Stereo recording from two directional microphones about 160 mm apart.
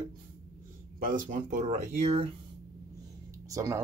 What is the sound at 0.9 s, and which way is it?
Speech, 60° right (ahead or behind).